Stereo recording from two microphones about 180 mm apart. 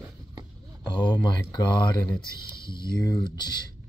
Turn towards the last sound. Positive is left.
turn(degrees=25)  # may be behind; listen again after turning